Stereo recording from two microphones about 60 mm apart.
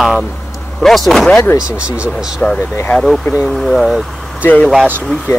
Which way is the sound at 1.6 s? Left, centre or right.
Centre.